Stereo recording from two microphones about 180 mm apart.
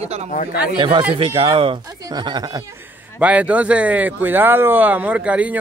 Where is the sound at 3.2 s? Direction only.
10° right (ahead or behind).